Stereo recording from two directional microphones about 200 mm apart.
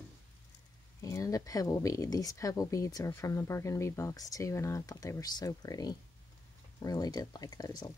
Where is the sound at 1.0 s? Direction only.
15° left (ahead or behind).